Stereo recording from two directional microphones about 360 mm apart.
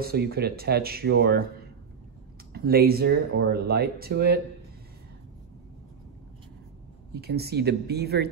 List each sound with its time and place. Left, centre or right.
0.0 s speech: right
2.5 s speech: right
7.2 s speech: right